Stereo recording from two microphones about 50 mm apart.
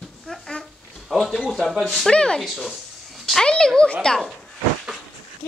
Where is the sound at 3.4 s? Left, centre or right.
Centre.